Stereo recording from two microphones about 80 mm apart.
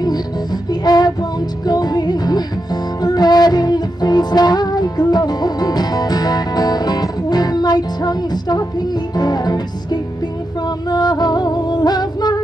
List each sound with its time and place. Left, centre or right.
0.0 s music: left